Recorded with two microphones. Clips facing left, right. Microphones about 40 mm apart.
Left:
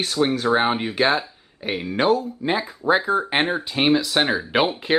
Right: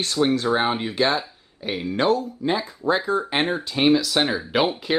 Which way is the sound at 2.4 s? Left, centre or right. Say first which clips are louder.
Left 1 dB; centre.